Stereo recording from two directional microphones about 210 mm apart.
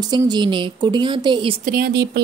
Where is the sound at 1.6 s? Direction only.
45° right (ahead or behind).